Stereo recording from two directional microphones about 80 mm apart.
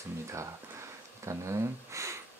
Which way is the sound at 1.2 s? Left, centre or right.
Right.